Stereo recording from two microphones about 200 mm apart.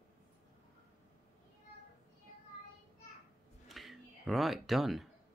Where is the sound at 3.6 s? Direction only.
Centre (ahead or behind).